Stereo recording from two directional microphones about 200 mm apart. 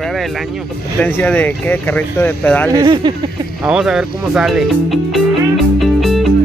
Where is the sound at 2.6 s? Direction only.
20° right (ahead or behind).